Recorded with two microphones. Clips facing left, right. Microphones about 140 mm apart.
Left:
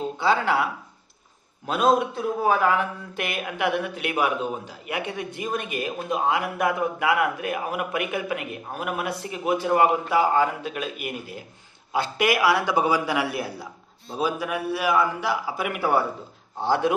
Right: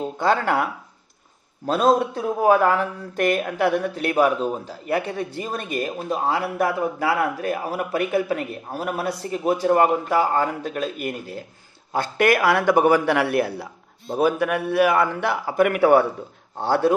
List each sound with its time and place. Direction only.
0.2 s speech: 50° right (ahead or behind)
1.7 s a man's voice: 35° right (ahead or behind)
11.0 s speech: 10° left (ahead or behind)
11.9 s a man's voice: 50° right (ahead or behind)